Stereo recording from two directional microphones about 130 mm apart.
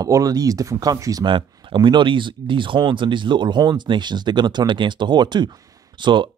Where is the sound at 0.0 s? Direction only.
25° right (ahead or behind).